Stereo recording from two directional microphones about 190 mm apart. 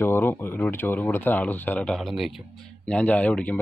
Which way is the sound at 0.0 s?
10° left (ahead or behind).